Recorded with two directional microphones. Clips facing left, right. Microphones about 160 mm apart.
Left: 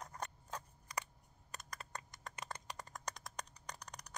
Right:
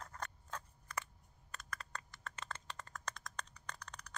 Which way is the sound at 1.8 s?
15° left (ahead or behind).